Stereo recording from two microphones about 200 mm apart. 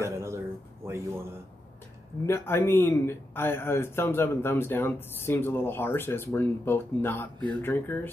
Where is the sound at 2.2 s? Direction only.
10° left (ahead or behind).